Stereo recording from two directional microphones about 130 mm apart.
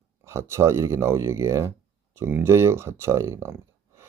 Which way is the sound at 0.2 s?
20° right (ahead or behind).